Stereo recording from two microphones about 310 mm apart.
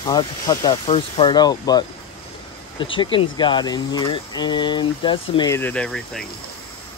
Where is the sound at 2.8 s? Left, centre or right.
Centre.